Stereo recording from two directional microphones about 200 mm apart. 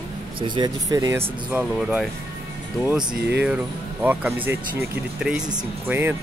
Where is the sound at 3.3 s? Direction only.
5° right (ahead or behind).